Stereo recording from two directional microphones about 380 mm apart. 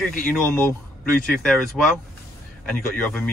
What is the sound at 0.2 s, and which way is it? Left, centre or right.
Speech, centre.